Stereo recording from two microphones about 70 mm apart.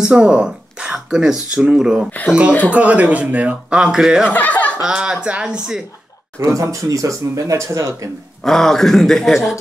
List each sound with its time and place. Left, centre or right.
0.0 s speech: centre
2.0 s speech: left
2.7 s speech: right
4.3 s speech: left
4.8 s speech: centre
6.4 s speech: right
8.5 s speech: centre